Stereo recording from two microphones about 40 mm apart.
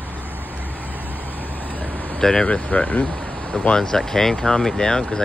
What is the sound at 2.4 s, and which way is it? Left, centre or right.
Speech, left.